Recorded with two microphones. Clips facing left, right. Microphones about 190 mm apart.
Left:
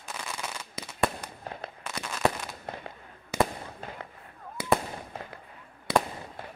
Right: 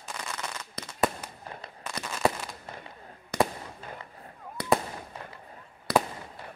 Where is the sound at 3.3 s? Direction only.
5° left (ahead or behind).